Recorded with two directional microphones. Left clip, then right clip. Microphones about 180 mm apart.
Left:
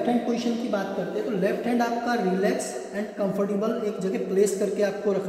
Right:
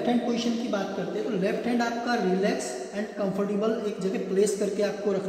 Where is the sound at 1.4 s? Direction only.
15° left (ahead or behind).